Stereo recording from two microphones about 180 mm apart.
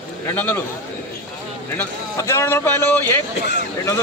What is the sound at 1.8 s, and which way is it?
Speech, 15° left (ahead or behind).